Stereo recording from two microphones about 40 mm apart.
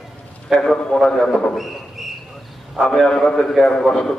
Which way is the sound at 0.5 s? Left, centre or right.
Centre.